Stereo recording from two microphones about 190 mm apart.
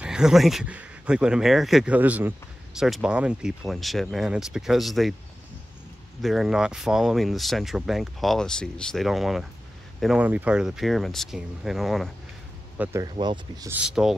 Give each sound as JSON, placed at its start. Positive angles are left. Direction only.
{"t": 0.0, "sound": "speech", "side_deg": -5}
{"t": 6.2, "sound": "speech", "side_deg": 0}
{"t": 13.0, "sound": "speech", "side_deg": -20}
{"t": 13.7, "sound": "speech", "side_deg": -5}